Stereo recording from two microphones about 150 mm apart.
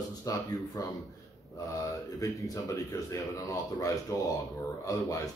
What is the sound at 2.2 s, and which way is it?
Speech, 20° left (ahead or behind).